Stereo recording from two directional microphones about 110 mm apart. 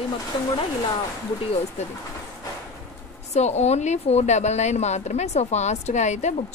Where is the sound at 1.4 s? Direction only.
65° left (ahead or behind).